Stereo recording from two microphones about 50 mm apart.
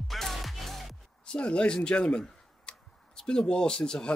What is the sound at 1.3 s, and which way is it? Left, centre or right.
Speech, left.